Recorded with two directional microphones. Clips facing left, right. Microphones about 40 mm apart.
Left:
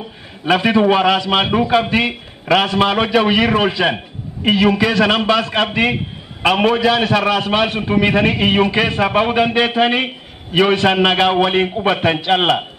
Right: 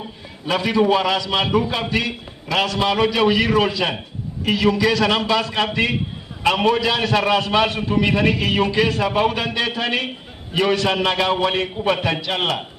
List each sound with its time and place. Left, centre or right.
0.5 s a man's voice: left